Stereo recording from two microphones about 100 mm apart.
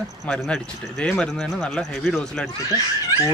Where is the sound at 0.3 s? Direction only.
10° left (ahead or behind).